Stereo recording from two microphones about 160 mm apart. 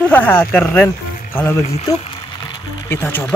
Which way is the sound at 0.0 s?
10° left (ahead or behind).